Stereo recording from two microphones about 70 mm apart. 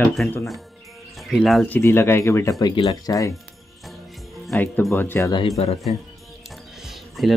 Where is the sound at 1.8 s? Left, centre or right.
Left.